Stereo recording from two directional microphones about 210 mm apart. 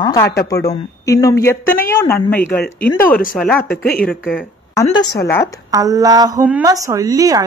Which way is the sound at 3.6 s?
45° left (ahead or behind).